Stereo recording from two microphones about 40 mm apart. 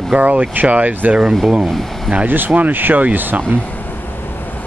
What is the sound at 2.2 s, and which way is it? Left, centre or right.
Speech, right.